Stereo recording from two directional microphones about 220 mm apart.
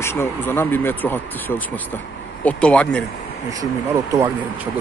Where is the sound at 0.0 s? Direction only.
10° left (ahead or behind).